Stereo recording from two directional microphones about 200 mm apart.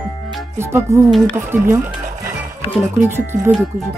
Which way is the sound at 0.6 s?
15° right (ahead or behind).